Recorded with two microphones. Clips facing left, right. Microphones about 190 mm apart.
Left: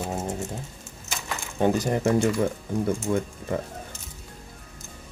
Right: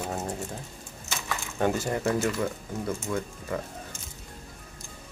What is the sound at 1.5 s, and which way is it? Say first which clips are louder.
Speech: left 4 dB; 20° left (ahead or behind).